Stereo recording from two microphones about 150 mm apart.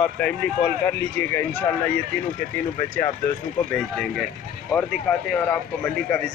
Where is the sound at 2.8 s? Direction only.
15° left (ahead or behind).